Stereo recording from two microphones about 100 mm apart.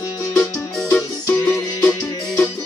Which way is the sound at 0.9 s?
15° left (ahead or behind).